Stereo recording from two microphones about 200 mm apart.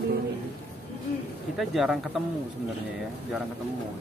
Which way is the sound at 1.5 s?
Centre (ahead or behind).